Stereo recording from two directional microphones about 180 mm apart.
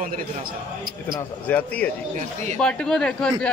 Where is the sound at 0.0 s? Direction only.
50° right (ahead or behind).